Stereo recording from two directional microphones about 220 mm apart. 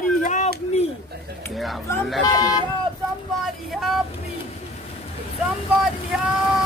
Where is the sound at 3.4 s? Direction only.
Centre (ahead or behind).